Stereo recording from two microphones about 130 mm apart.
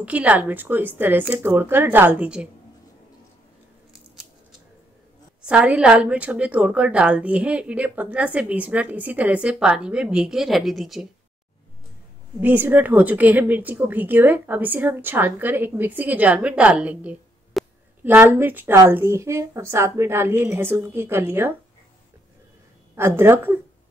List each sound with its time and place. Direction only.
0.0 s a woman's voice: 10° right (ahead or behind)
5.4 s a woman's voice: 10° right (ahead or behind)
12.4 s a woman's voice: 15° right (ahead or behind)
17.6 s a sound: centre (ahead or behind)
18.0 s a woman's voice: 15° right (ahead or behind)
22.9 s a woman's voice: 20° right (ahead or behind)